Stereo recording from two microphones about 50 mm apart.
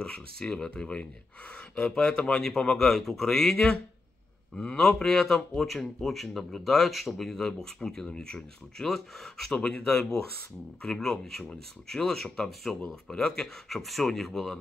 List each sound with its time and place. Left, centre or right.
0.0 s speech: centre
2.7 s speech: centre
9.5 s speech: centre
12.8 s speech: centre